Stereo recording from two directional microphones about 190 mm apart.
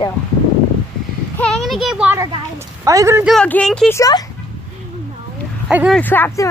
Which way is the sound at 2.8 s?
15° right (ahead or behind).